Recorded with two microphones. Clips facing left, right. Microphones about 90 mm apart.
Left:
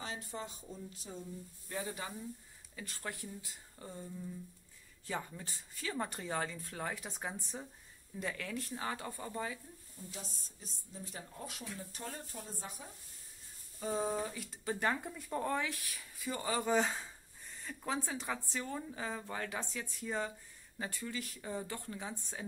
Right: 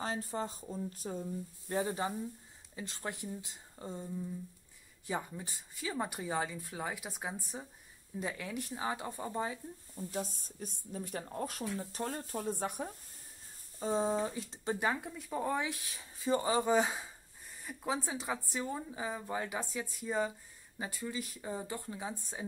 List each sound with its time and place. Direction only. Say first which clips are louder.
0.0 s speech: right 6 dB; 40° right (ahead or behind)
1.8 s speech: right 7 dB; 30° right (ahead or behind)
9.9 s a woman's voice: right 10 dB; 50° right (ahead or behind)
12.3 s speech: right 10 dB; 60° right (ahead or behind)
13.7 s speech: right 4 dB; 30° right (ahead or behind)
14.8 s speech: left 1 dB; 5° right (ahead or behind)
15.4 s speech: right 2 dB; 20° right (ahead or behind)